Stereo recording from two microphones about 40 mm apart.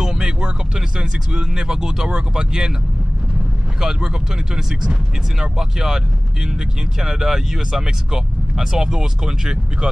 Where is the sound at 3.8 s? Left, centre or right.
Centre.